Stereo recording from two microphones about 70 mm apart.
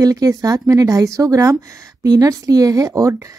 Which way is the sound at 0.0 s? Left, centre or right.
Right.